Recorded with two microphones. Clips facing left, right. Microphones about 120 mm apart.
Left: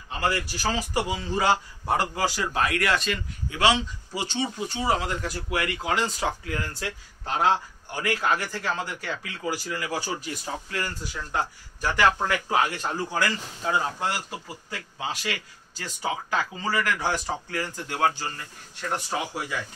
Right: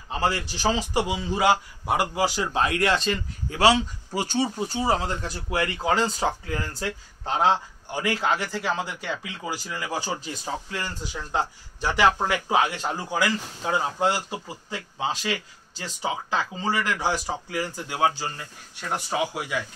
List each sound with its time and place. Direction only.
0.1 s a man's voice: 30° right (ahead or behind)
4.7 s a man's voice: 30° right (ahead or behind); by 18.1 s 15° right (ahead or behind)
18.9 s speech: centre (ahead or behind)